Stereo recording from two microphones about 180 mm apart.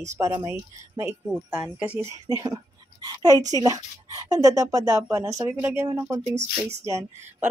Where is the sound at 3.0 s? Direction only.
20° right (ahead or behind).